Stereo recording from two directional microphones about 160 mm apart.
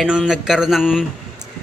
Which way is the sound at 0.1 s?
5° right (ahead or behind).